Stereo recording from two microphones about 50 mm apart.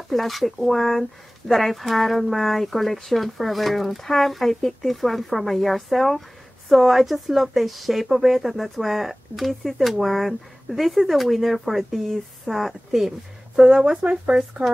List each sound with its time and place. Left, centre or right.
0.1 s speech: centre
14.0 s speech: right